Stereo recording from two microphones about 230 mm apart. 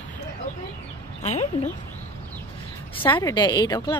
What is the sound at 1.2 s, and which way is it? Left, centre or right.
Speech, left.